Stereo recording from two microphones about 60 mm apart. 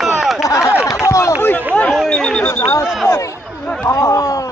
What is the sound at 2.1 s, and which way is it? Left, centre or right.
Speech, centre.